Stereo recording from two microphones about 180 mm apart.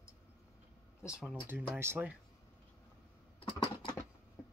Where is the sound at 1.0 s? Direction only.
5° right (ahead or behind).